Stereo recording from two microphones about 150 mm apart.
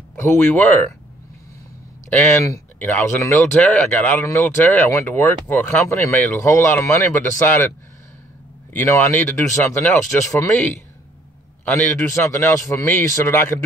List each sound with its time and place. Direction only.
0.1 s speech: 15° left (ahead or behind)
2.0 s speech: 15° left (ahead or behind)
8.7 s speech: 15° left (ahead or behind)
11.6 s speech: 15° left (ahead or behind)